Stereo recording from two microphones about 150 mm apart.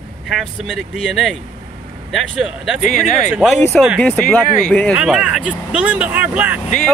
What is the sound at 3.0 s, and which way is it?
Speech, 55° left (ahead or behind).